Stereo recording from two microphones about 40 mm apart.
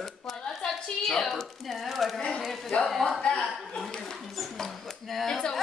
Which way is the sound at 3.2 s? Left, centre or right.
Left.